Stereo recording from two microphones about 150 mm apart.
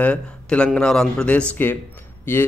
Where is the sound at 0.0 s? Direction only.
10° left (ahead or behind).